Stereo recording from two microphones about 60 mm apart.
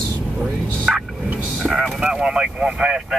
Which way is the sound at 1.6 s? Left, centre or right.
Centre.